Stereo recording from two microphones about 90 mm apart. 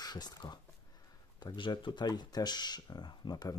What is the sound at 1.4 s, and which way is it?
Speech, 60° left (ahead or behind).